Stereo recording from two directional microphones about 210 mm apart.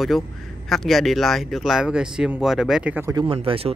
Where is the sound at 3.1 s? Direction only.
20° right (ahead or behind).